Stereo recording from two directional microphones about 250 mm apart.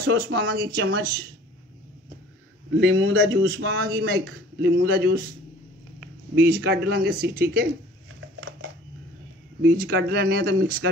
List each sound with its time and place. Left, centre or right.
0.0 s a man's voice: right
2.8 s a man's voice: right
6.4 s a man's voice: right
8.4 s a sound: right
9.6 s a man's voice: right